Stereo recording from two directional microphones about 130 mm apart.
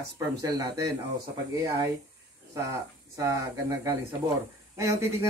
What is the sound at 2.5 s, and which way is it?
Speech, 25° right (ahead or behind).